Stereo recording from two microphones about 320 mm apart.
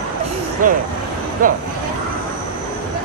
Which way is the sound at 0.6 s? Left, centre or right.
Right.